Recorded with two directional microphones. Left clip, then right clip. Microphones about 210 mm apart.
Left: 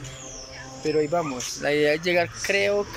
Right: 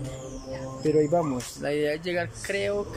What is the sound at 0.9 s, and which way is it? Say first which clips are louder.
Speech: even; 10° right (ahead or behind).